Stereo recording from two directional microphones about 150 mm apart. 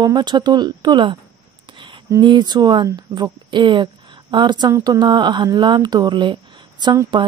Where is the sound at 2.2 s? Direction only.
30° right (ahead or behind).